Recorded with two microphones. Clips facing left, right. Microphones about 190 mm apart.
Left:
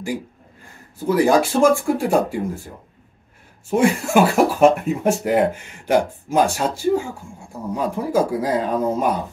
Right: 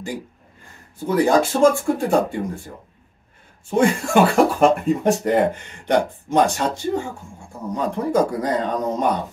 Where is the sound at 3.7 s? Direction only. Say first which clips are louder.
Even; 5° left (ahead or behind).